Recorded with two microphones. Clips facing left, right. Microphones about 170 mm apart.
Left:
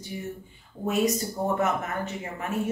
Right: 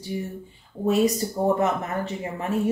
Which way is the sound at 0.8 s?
35° right (ahead or behind).